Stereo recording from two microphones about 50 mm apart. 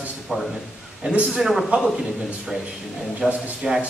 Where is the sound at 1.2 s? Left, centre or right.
Centre.